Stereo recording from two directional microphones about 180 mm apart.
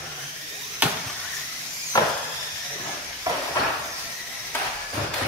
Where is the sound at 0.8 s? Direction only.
10° right (ahead or behind).